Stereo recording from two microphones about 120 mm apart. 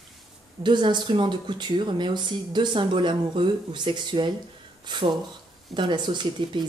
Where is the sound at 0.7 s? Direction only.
40° right (ahead or behind).